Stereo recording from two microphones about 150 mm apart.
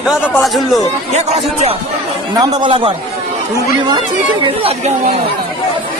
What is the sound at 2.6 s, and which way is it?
Speech, 35° right (ahead or behind).